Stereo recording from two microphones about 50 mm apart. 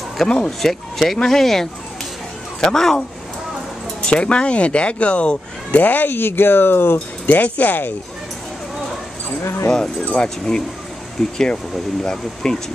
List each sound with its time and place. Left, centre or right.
0.5 s speech: centre
4.0 s speech: left
5.8 s speech: left
7.2 s speech: left
9.4 s speech: left
10.1 s speech: centre